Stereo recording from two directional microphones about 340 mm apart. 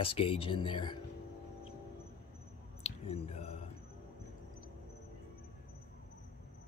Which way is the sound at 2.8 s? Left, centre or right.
Centre.